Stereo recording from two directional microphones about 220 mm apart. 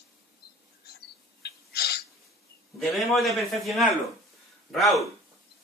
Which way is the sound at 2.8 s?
Centre (ahead or behind).